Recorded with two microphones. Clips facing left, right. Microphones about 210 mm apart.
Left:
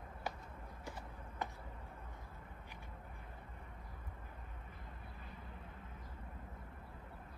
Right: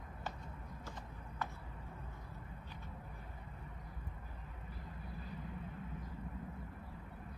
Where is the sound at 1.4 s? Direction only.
20° left (ahead or behind).